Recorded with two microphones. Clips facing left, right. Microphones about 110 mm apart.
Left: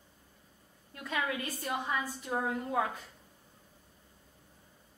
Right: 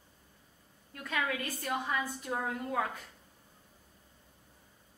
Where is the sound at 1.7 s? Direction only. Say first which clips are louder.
Right 1 dB; 5° left (ahead or behind).